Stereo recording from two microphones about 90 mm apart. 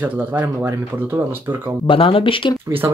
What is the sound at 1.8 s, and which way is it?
Speech, 80° left.